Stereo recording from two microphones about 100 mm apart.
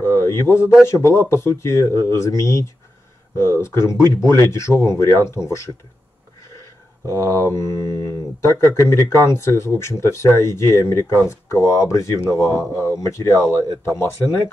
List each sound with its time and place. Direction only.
0.3 s speech: 25° left (ahead or behind)
7.2 s speech: 25° left (ahead or behind)